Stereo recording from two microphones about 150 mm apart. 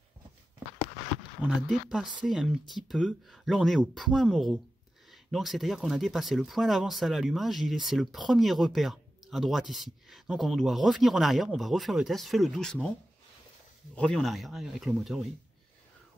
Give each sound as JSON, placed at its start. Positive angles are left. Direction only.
{"t": 1.5, "sound": "speech", "side_deg": -5}
{"t": 13.9, "sound": "speech", "side_deg": 5}